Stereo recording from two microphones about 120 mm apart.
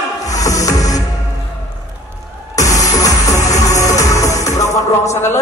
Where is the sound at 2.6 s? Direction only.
30° left (ahead or behind).